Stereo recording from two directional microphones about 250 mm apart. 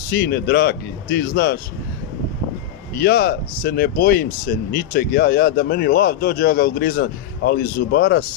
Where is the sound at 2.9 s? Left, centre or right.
Left.